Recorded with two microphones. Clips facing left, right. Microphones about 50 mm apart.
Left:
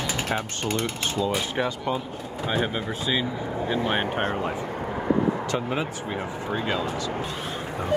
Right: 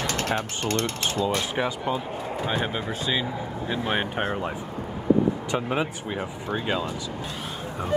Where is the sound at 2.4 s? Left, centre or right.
Centre.